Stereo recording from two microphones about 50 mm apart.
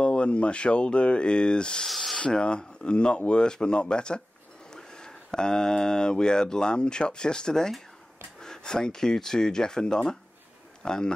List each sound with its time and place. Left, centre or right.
0.0 s speech: left
1.9 s rub: centre
2.1 s a man's voice: centre